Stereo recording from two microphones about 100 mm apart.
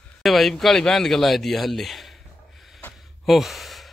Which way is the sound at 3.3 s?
Centre (ahead or behind).